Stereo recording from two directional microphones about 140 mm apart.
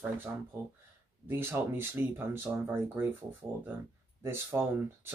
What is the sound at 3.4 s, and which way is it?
Speech, 5° right (ahead or behind).